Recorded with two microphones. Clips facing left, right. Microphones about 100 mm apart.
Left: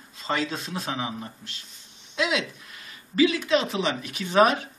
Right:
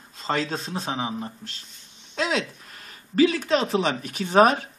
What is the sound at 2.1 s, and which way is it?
Speech, 40° right (ahead or behind).